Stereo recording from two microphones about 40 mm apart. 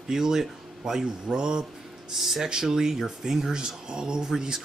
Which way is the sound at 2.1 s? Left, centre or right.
Centre.